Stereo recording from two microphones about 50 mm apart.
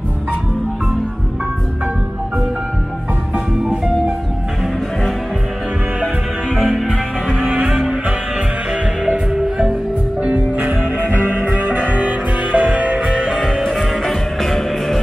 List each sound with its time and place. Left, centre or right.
6.5 s music: centre
9.0 s music: centre
10.2 s music: right
13.0 s music: centre
13.7 s music: centre